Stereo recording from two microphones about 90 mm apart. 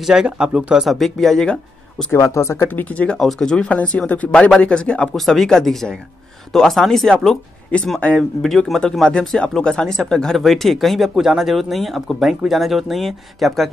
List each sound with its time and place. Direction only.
0.0 s speech: 5° right (ahead or behind)
2.1 s speech: 35° left (ahead or behind); by 3.2 s 15° left (ahead or behind)
3.2 s speech: 5° left (ahead or behind)